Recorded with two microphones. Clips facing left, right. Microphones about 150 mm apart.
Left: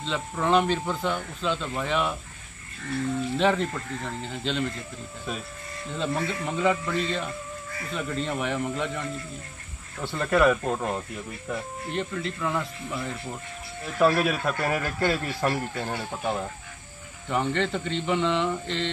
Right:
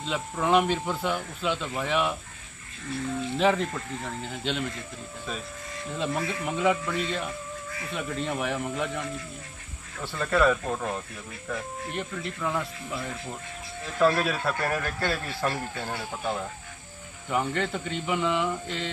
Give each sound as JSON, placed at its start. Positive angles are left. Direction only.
{"t": 0.0, "sound": "speech", "side_deg": -10}
{"t": 3.3, "sound": "speech", "side_deg": 0}
{"t": 6.2, "sound": "speech", "side_deg": -5}
{"t": 10.0, "sound": "speech", "side_deg": 15}
{"t": 11.9, "sound": "speech", "side_deg": -5}
{"t": 13.9, "sound": "speech", "side_deg": 10}
{"t": 17.3, "sound": "speech", "side_deg": -5}